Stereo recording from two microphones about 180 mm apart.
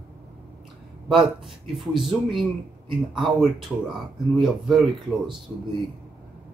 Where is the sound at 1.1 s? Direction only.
Centre (ahead or behind).